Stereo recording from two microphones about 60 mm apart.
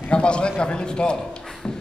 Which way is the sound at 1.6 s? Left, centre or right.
Centre.